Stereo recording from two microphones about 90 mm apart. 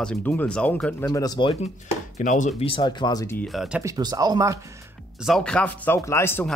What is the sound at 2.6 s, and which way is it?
Speech, 65° left (ahead or behind).